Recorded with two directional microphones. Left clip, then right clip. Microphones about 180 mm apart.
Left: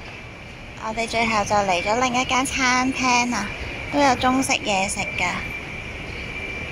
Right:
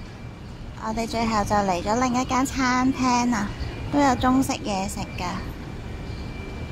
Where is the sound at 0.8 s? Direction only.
10° right (ahead or behind).